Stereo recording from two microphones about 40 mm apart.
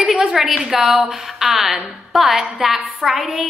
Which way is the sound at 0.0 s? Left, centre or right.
Centre.